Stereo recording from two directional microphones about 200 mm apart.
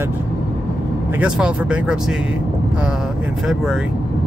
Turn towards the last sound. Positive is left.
turn(degrees=0)  # may be behind; listen again after turning